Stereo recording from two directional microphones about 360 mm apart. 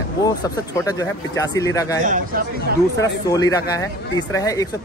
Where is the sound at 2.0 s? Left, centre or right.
Right.